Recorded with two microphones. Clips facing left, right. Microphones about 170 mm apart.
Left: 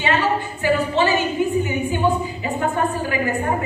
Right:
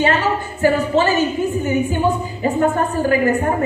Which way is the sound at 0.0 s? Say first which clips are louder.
Right 3 dB; 45° right (ahead or behind).